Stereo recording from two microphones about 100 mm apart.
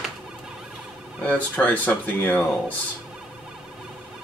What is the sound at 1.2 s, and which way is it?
Speech, 15° left (ahead or behind).